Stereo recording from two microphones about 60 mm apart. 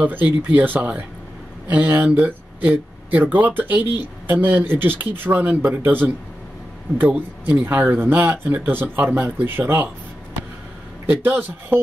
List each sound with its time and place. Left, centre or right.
0.0 s speech: right
7.1 s speech: right
11.1 s speech: right